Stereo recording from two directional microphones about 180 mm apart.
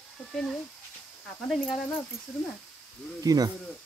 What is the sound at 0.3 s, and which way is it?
Speech, centre (ahead or behind).